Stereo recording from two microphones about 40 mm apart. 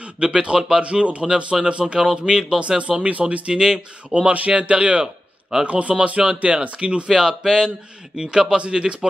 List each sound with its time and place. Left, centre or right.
0.0 s speech: right
1.2 s speech: centre
3.1 s speech: right
3.4 s speech: centre
4.1 s speech: right
5.0 s a sound: centre
5.7 s speech: right
7.1 s speech: centre